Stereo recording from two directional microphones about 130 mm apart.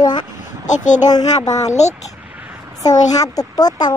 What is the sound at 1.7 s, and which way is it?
Speech, 60° left (ahead or behind).